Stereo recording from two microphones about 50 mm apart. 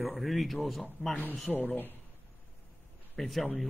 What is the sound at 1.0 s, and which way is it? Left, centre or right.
Speech, left.